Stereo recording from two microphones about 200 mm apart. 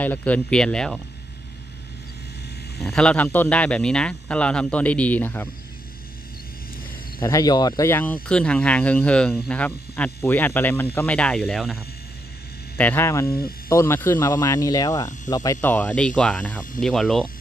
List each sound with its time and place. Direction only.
0.0 s a man's voice: 5° left (ahead or behind)
2.8 s a man's voice: 5° left (ahead or behind)
7.2 s a man's voice: 20° left (ahead or behind); by 11.8 s centre (ahead or behind)
12.7 s speech: 10° left (ahead or behind)
13.3 s speech: 50° left (ahead or behind)
13.7 s a man's voice: 10° left (ahead or behind)